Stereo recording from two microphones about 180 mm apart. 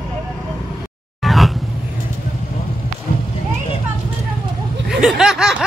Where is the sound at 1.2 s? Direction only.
Centre (ahead or behind).